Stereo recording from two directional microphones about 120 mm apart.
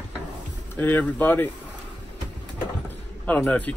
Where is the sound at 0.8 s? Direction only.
15° left (ahead or behind).